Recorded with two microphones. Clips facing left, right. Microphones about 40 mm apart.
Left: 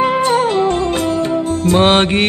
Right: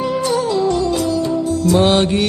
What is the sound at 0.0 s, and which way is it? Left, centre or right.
Music, left.